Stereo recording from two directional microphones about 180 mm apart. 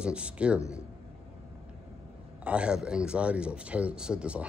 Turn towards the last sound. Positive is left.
turn(degrees=-5)  # may be behind; listen again after turning